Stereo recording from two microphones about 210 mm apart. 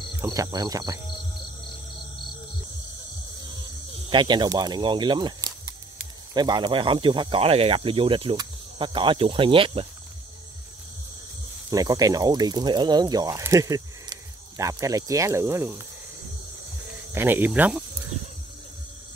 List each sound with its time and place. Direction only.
0.2 s speech: 15° right (ahead or behind)
4.1 s speech: 20° right (ahead or behind)
11.7 s speech: 15° right (ahead or behind)
17.1 s speech: 10° right (ahead or behind)